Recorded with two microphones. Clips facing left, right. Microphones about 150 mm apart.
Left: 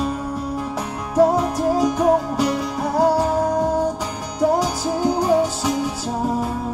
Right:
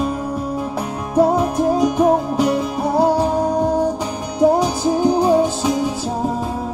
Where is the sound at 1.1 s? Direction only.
20° right (ahead or behind).